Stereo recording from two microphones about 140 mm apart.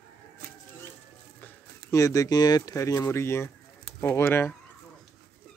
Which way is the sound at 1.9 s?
25° left (ahead or behind).